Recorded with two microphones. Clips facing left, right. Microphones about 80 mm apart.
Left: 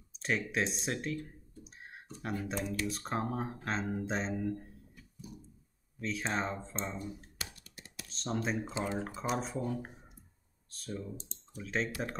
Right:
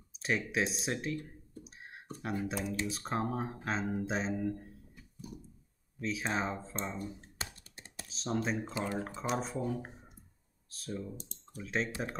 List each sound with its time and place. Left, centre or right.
0.1 s speech: centre
1.6 s a sound: centre
2.4 s speech: centre
5.9 s speech: centre
7.2 s computer keyboard: right
8.1 s speech: centre
8.7 s speech: centre
9.0 s speech: centre